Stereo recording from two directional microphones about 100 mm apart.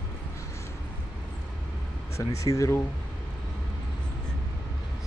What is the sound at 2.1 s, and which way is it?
Speech, 30° left (ahead or behind).